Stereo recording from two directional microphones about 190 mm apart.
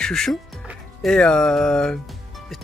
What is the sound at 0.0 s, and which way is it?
Speech, 5° left (ahead or behind).